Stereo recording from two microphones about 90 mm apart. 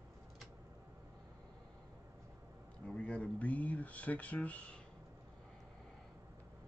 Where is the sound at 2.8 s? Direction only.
10° left (ahead or behind).